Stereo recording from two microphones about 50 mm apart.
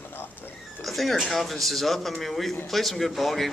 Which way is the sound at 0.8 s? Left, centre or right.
Centre.